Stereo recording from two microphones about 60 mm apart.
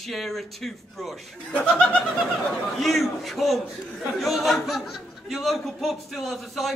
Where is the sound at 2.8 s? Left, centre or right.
Centre.